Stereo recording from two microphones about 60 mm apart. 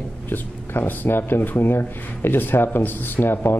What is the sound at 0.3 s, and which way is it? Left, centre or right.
Speech, left.